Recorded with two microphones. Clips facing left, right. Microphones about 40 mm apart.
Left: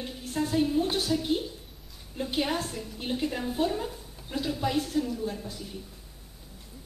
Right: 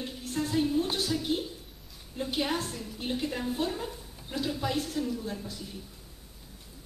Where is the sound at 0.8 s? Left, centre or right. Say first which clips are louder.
Left 2 dB; centre.